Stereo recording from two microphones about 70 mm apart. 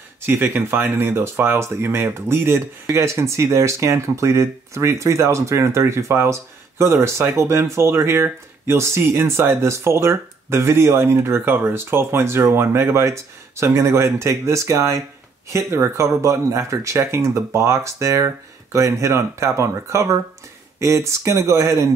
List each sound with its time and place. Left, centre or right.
0.3 s speech: right